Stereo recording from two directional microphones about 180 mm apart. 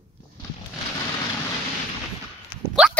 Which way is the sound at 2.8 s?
5° right (ahead or behind).